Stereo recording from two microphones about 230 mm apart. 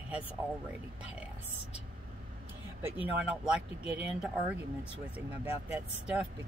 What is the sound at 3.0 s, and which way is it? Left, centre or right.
Speech, centre.